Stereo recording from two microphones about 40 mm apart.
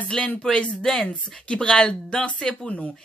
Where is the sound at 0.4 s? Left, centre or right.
Left.